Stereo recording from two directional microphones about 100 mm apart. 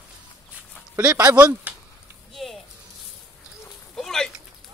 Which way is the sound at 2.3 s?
Centre (ahead or behind).